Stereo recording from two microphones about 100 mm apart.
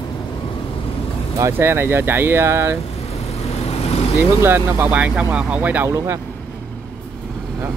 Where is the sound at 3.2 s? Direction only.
90° left.